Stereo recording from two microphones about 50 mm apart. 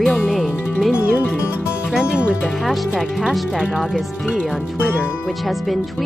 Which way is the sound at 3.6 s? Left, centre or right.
Centre.